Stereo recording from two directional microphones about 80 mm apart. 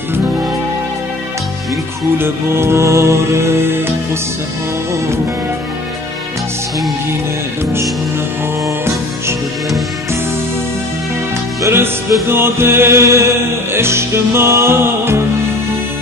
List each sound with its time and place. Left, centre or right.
2.1 s music: right
11.6 s music: right